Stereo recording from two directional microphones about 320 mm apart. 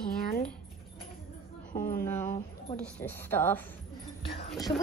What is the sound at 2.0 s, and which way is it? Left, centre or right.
A woman's voice, centre.